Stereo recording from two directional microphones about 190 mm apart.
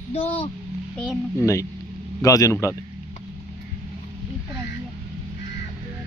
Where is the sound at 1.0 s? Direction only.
15° left (ahead or behind).